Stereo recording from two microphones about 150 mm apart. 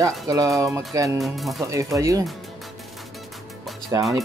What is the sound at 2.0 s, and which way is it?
Speech, 20° right (ahead or behind).